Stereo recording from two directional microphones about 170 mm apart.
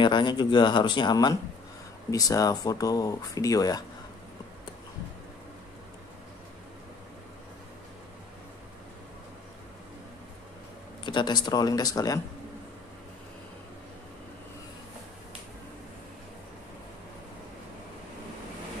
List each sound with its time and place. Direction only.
0.0 s speech: 25° left (ahead or behind)
11.1 s speech: 25° left (ahead or behind)